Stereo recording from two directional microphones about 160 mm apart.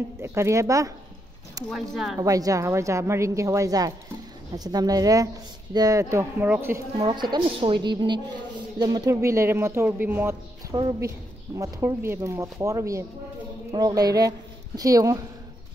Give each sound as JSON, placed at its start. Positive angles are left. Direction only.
{"t": 0.2, "sound": "a woman's voice", "side_deg": -15}
{"t": 1.7, "sound": "speech", "side_deg": 0}
{"t": 2.1, "sound": "a woman's voice", "side_deg": -20}
{"t": 7.1, "sound": "a woman's voice", "side_deg": -30}
{"t": 10.7, "sound": "a woman's voice", "side_deg": -25}